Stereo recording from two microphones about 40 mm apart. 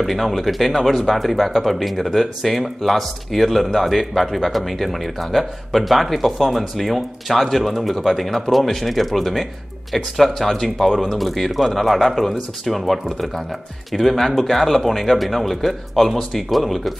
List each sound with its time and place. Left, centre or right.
0.0 s speech: centre